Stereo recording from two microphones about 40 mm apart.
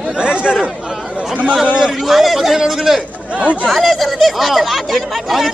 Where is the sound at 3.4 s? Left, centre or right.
Right.